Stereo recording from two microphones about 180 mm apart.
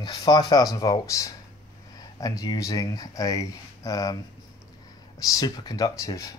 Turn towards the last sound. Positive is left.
turn(degrees=20)  # may be behind; listen again after turning